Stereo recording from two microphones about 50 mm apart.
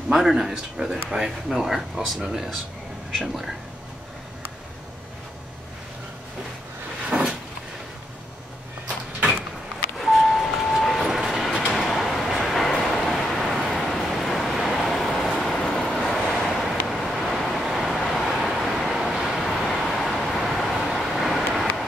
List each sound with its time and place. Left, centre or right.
0.1 s speech: centre
2.1 s speech: centre
7.1 s vehicle: centre
8.8 s a sound: right
9.9 s train: centre
11.7 s vehicle: centre
17.9 s vehicle: centre
18.2 s vehicle: centre